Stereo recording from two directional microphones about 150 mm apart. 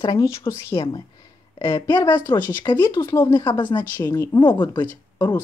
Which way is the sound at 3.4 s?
30° left (ahead or behind).